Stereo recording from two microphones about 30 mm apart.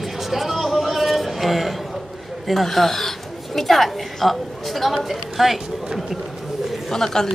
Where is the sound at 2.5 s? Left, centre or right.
Centre.